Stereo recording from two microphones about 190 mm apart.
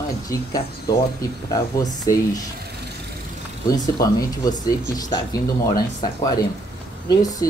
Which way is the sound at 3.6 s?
20° left (ahead or behind).